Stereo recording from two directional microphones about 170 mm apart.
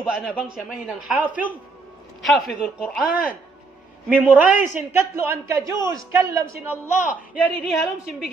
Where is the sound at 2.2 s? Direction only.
Centre (ahead or behind).